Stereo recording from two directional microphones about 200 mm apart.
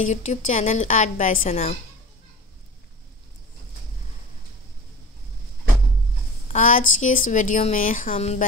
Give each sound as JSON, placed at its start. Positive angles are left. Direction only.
{"t": 0.1, "sound": "speech", "side_deg": 35}
{"t": 6.5, "sound": "speech", "side_deg": 40}